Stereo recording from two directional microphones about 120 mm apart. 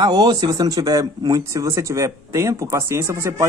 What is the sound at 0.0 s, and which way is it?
Speech, 35° right (ahead or behind).